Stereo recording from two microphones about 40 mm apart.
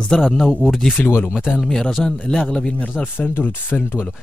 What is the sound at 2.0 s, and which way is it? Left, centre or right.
Speech, centre.